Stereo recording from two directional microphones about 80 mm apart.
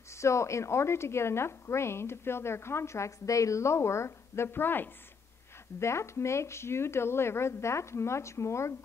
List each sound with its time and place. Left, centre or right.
0.1 s a woman's voice: left